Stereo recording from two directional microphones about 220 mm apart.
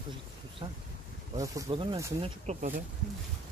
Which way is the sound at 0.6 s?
20° right (ahead or behind).